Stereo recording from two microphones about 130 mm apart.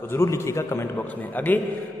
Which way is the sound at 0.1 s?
20° left (ahead or behind).